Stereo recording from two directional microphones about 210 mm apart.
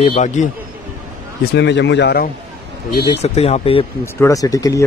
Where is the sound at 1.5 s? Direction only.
55° left (ahead or behind).